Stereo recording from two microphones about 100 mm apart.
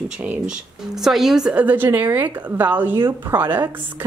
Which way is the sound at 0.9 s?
5° right (ahead or behind).